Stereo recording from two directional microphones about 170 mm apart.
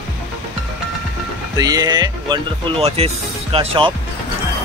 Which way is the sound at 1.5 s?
20° right (ahead or behind).